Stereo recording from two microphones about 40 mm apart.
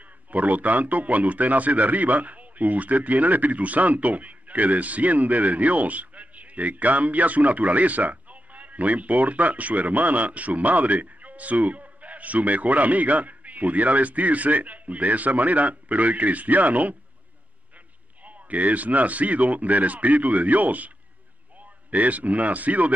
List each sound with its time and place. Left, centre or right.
0.0 s a man's voice: right
18.2 s a man's voice: right